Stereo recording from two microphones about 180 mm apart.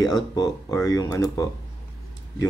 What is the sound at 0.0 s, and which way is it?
Speech, 20° left (ahead or behind).